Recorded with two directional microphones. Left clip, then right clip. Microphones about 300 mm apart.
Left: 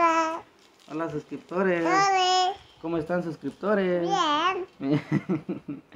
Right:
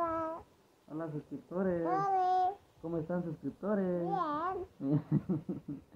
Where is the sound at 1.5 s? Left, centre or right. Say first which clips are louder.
Left 10 dB; left.